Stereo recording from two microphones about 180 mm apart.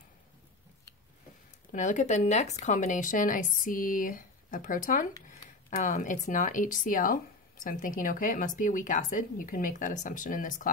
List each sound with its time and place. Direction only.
1.7 s speech: 45° left (ahead or behind)